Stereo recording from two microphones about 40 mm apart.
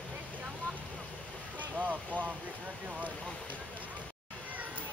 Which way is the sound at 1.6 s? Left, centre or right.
Right.